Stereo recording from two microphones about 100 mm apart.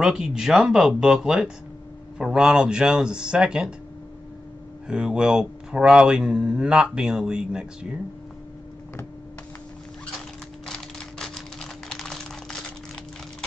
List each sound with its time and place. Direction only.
0.0 s speech: 5° right (ahead or behind)
4.8 s speech: 10° right (ahead or behind)
10.7 s a sound: 5° left (ahead or behind)
11.9 s crumpling: 5° left (ahead or behind)